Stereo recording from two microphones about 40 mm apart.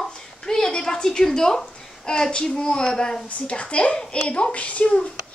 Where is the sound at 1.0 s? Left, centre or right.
Centre.